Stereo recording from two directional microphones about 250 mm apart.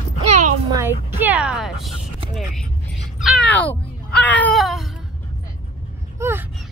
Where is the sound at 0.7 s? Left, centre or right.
Centre.